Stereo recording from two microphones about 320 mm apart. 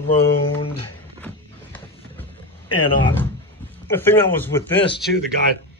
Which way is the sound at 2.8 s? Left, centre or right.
Centre.